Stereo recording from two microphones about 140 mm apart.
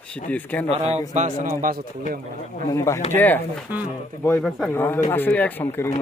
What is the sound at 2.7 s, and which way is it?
Speech, 20° left (ahead or behind).